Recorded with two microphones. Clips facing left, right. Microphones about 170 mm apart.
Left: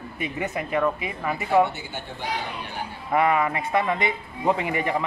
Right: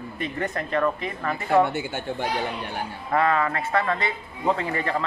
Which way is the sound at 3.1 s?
15° left (ahead or behind).